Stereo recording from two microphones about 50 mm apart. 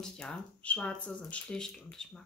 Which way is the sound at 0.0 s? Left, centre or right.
Centre.